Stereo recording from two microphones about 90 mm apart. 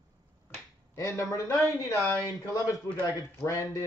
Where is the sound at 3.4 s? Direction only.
35° left (ahead or behind).